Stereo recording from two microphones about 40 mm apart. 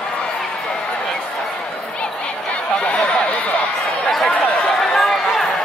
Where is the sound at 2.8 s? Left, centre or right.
Left.